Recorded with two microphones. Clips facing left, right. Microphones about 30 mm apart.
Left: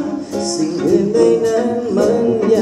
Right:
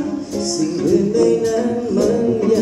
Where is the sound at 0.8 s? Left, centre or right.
Left.